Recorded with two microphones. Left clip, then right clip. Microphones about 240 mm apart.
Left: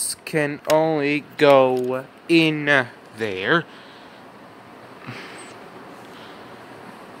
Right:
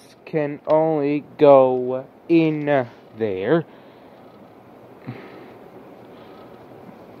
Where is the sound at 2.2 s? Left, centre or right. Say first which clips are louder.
Left 1 dB; centre.